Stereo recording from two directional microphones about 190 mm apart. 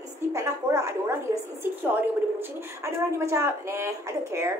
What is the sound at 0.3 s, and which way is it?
A woman's voice, 15° right (ahead or behind).